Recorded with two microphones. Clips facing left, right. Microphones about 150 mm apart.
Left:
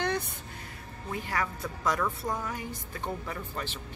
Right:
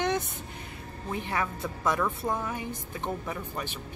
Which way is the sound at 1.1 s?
20° right (ahead or behind).